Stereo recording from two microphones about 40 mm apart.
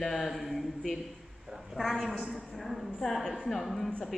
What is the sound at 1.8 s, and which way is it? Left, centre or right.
A man's voice, centre.